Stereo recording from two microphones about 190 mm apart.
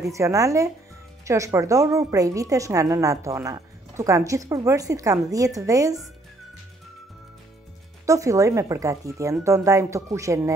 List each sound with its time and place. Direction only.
0.1 s a woman's voice: 15° right (ahead or behind)
8.1 s a woman's voice: 15° right (ahead or behind)